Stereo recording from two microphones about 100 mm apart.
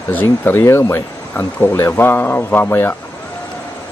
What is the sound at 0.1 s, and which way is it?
Speech, 20° left (ahead or behind).